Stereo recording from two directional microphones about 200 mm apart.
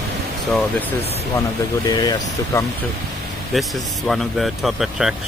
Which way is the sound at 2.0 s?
20° left (ahead or behind).